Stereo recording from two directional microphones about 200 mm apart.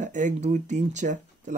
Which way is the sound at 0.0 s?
40° right (ahead or behind).